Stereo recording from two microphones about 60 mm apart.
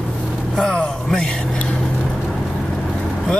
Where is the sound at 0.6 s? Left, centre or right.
Centre.